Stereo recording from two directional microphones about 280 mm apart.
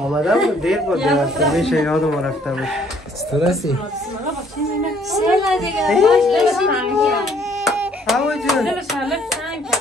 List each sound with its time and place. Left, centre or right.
0.1 s speech: centre
3.3 s speech: centre
5.1 s a woman's voice: centre